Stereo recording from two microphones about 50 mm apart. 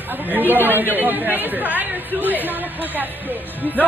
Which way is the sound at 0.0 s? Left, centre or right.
Right.